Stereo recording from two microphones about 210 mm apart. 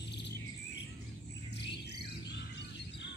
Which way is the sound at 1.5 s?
55° left (ahead or behind).